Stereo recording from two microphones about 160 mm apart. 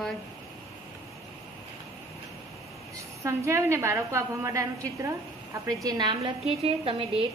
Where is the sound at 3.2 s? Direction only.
15° right (ahead or behind).